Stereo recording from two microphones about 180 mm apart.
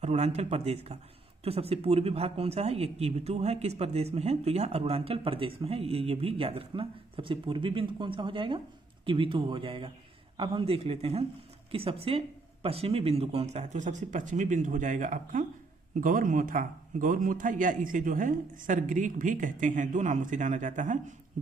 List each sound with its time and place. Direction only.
0.0 s a man's voice: 40° right (ahead or behind)